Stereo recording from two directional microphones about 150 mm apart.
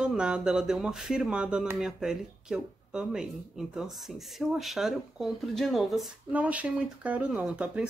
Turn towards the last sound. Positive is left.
turn(degrees=-10)  # may be behind; listen again after turning